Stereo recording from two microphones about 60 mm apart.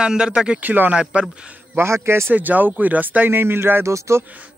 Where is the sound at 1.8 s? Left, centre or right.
Right.